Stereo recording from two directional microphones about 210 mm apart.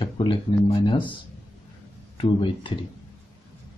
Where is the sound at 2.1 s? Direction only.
25° left (ahead or behind).